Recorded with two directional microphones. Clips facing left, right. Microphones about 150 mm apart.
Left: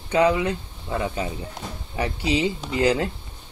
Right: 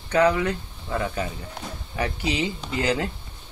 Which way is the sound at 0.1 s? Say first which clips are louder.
Left 1 dB; 20° left (ahead or behind).